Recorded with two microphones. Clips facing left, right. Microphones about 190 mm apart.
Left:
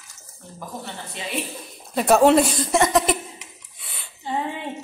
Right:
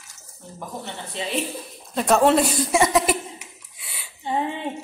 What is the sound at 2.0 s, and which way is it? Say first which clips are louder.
Speech: left 2 dB; 5° left (ahead or behind).